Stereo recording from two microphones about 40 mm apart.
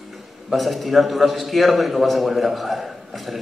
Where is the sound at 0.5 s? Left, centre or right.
Centre.